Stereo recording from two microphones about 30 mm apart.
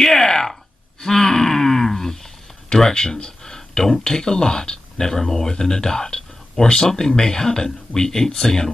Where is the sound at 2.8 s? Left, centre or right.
Centre.